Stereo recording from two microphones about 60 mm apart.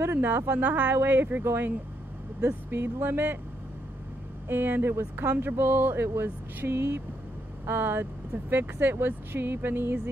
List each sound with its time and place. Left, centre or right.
0.0 s speech: right
4.5 s speech: right